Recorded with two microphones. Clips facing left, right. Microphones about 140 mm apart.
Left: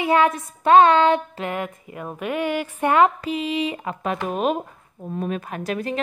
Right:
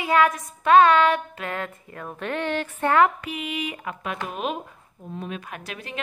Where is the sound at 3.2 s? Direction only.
30° left (ahead or behind).